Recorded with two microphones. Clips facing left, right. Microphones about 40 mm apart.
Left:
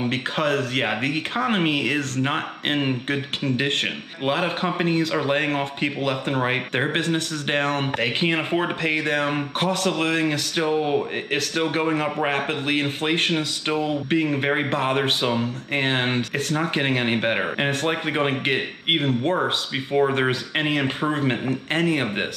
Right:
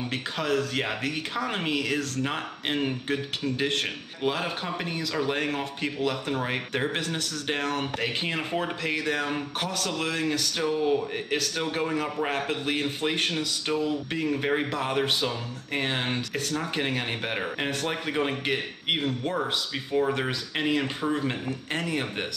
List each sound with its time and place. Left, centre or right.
0.1 s a man's voice: left